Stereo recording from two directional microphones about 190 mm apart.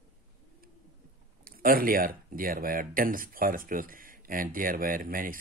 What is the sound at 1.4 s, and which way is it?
Speech, 50° right (ahead or behind).